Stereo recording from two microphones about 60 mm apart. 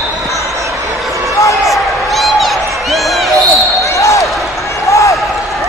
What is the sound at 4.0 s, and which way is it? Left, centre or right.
Basketball bounce, left.